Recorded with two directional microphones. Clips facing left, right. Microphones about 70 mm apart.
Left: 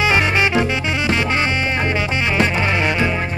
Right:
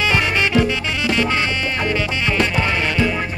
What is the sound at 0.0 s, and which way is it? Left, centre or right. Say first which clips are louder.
Music: left 2 dB; left.